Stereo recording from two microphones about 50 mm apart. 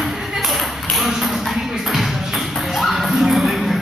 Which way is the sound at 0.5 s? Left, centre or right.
Centre.